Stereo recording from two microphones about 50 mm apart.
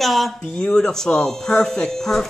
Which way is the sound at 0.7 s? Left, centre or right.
Centre.